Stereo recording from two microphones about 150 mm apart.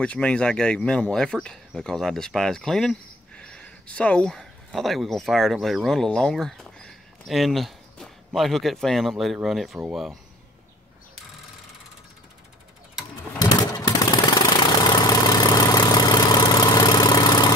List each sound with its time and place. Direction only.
0.0 s speech: 5° left (ahead or behind)
13.4 s a sound: 25° left (ahead or behind)
14.9 s vehicle: 25° left (ahead or behind)